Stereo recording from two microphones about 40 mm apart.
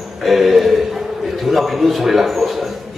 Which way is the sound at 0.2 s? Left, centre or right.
Centre.